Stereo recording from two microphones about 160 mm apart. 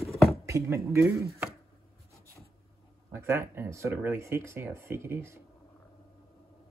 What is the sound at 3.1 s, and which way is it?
Speech, 15° right (ahead or behind).